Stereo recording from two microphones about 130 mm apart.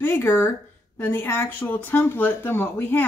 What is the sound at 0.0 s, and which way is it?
Speech, 15° left (ahead or behind).